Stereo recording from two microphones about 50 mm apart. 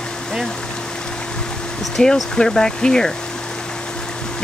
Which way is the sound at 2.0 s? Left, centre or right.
Centre.